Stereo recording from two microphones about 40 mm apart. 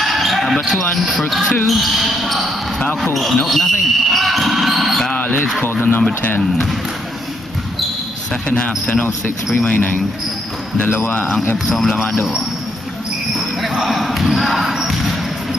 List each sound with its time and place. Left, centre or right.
0.0 s basketball bounce: centre
1.3 s speech: centre
3.0 s basketball bounce: centre
5.1 s a sound: left
5.6 s speech: left
8.5 s speech: left
9.7 s speech: left
10.9 s speech: left
11.5 s speech: centre
13.4 s basketball bounce: centre